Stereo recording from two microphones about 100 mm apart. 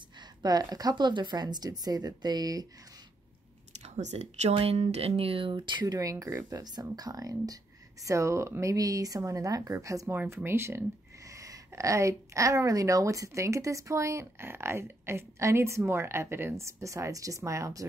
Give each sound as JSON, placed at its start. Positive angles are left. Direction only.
{"t": 0.4, "sound": "speech", "side_deg": -40}
{"t": 3.8, "sound": "speech", "side_deg": -90}
{"t": 5.9, "sound": "speech", "side_deg": -35}